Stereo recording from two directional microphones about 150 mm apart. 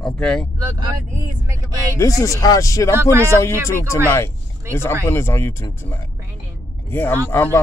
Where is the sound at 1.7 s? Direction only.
20° right (ahead or behind).